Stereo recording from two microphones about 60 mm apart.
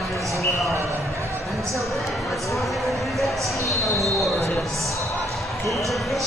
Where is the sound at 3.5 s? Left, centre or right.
Left.